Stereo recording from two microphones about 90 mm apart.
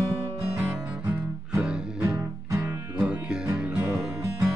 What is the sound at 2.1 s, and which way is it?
Music, 35° right (ahead or behind).